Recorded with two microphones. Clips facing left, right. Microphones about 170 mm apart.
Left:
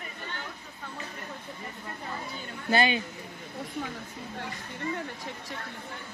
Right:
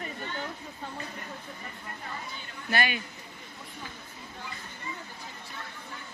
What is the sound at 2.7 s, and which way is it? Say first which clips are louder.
Speech: left 5 dB; 25° left (ahead or behind).